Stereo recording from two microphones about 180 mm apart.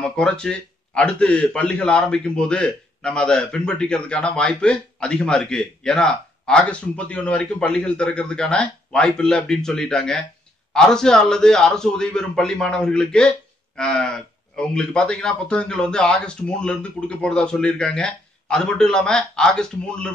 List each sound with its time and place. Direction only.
0.0 s a man's voice: 5° left (ahead or behind)